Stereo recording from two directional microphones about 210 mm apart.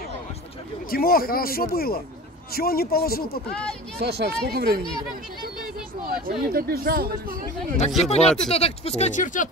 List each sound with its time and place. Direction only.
0.8 s speech: 45° left (ahead or behind)
4.0 s speech: 50° right (ahead or behind)
6.2 s speech: 45° right (ahead or behind)
8.0 s speech: 30° left (ahead or behind)